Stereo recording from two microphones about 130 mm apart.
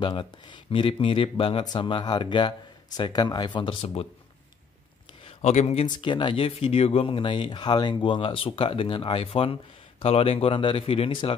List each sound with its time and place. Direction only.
0.0 s speech: 40° left (ahead or behind)
5.4 s speech: 60° left (ahead or behind)
5.9 s speech: 40° left (ahead or behind)